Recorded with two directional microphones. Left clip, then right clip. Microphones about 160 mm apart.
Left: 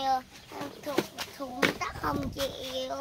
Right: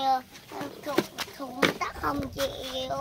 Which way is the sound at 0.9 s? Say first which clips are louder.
Right 3 dB; 80° right.